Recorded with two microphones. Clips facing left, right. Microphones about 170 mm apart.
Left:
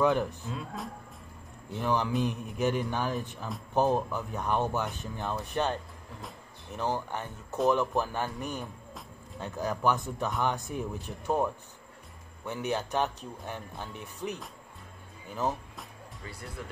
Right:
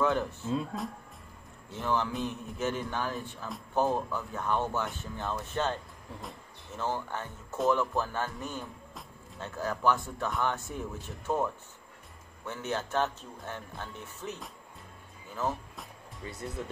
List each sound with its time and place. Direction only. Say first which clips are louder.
0.0 s speech: left 2 dB; 20° left (ahead or behind)
0.7 s speech: right 2 dB; centre (ahead or behind)
1.7 s speech: left 2 dB; 15° left (ahead or behind)
16.3 s speech: right 5 dB; 20° right (ahead or behind)